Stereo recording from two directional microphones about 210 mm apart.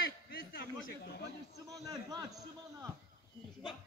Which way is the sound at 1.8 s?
20° right (ahead or behind).